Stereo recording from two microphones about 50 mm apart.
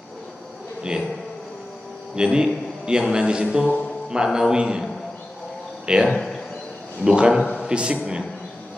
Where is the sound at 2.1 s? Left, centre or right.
Centre.